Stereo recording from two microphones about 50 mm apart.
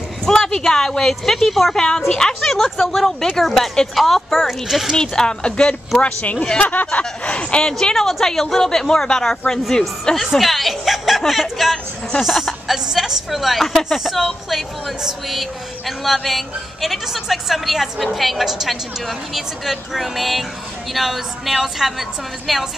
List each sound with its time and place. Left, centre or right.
0.2 s a woman's voice: centre
5.0 s speech: centre
6.6 s speech: left
7.8 s a woman's voice: centre
10.1 s a woman's voice: centre